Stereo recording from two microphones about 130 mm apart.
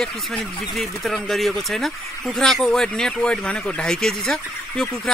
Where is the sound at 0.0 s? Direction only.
5° left (ahead or behind).